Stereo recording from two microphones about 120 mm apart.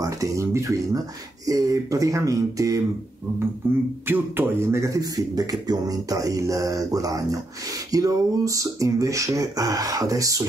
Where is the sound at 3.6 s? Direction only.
20° right (ahead or behind).